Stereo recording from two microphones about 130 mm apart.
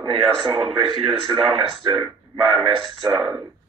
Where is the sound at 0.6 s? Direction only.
5° right (ahead or behind).